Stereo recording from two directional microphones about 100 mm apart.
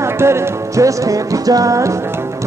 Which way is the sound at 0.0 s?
25° right (ahead or behind).